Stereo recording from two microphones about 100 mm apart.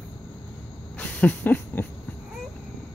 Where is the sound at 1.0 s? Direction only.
15° left (ahead or behind).